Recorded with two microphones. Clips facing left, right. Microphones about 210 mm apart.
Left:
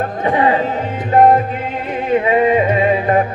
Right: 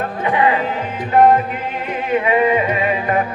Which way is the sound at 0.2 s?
35° left (ahead or behind).